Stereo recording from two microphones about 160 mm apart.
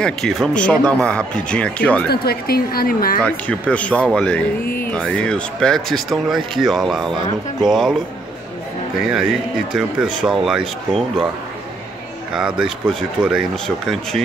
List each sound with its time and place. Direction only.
0.0 s speech: centre (ahead or behind)
2.0 s speech: 75° left (ahead or behind)
3.3 s speech: 10° left (ahead or behind)
9.1 s speech: 5° right (ahead or behind)
12.3 s speech: 5° right (ahead or behind)